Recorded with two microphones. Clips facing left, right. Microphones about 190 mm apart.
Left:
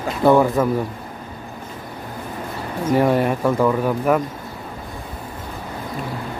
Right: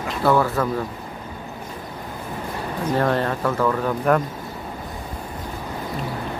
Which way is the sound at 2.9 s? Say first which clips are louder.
Left 5 dB; 10° left (ahead or behind).